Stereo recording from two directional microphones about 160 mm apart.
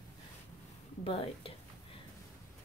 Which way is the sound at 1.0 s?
35° left (ahead or behind).